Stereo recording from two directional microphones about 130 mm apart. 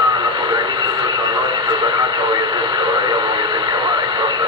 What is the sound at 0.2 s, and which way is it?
Radio, 35° right (ahead or behind).